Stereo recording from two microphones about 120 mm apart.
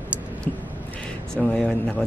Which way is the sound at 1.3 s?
5° left (ahead or behind).